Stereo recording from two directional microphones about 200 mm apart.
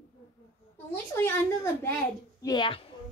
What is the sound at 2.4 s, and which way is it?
Speech, 20° left (ahead or behind).